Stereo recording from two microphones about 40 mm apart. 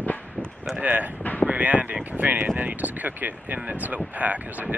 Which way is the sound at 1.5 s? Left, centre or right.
Right.